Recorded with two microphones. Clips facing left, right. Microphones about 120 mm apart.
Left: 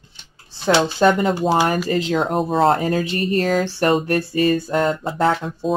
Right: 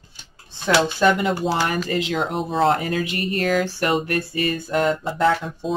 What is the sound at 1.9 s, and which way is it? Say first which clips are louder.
Speech: left 3 dB; 35° left (ahead or behind).